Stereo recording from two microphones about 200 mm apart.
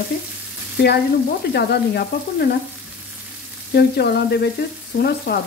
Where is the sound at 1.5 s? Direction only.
50° left (ahead or behind).